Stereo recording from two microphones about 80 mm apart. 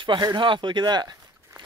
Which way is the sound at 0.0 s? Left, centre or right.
Right.